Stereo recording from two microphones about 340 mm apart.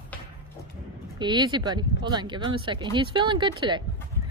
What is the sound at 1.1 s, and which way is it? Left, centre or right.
A woman's voice, centre.